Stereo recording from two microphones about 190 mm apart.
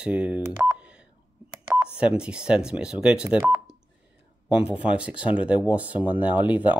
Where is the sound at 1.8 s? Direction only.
5° right (ahead or behind).